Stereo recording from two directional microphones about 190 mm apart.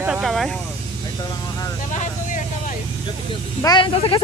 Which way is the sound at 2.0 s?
40° left (ahead or behind).